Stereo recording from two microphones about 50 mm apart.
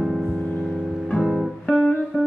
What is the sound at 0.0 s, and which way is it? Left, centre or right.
Music, centre.